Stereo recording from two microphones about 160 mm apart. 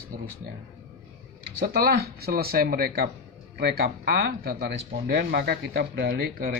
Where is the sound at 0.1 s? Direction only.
65° right (ahead or behind).